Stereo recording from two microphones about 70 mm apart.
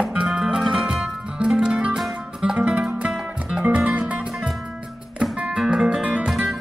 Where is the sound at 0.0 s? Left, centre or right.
Centre.